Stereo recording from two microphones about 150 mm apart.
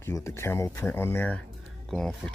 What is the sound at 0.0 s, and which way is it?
Speech, 15° left (ahead or behind).